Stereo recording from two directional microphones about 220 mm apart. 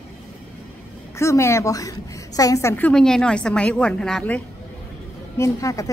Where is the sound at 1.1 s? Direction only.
15° left (ahead or behind).